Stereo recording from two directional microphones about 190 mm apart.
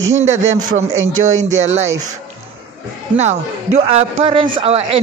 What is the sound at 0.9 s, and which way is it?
Speech, 90° right.